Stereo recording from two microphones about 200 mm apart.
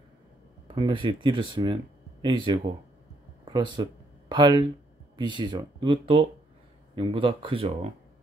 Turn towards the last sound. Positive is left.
turn(degrees=-25)  # may be behind; listen again after turning